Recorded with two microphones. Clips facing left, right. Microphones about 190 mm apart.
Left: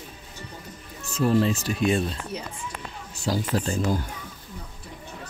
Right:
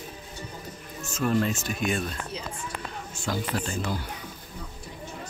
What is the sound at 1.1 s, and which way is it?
Speech, 35° left (ahead or behind).